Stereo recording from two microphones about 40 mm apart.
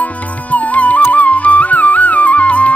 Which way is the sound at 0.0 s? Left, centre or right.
Left.